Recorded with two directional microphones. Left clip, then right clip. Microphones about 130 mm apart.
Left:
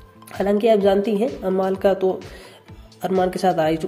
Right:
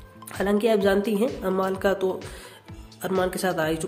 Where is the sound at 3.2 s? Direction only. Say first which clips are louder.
Left 6 dB; 25° left (ahead or behind).